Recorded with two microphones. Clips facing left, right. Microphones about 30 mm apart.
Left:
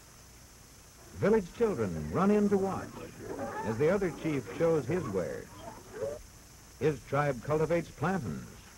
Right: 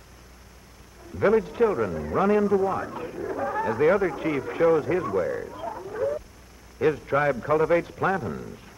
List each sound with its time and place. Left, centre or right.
1.1 s a man's voice: right